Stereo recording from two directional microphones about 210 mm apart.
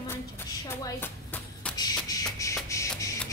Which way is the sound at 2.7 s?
15° left (ahead or behind).